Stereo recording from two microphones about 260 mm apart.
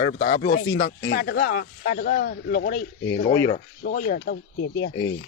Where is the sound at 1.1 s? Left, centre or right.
Left.